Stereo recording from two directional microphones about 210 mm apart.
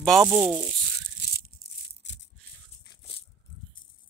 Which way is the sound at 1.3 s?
45° left (ahead or behind).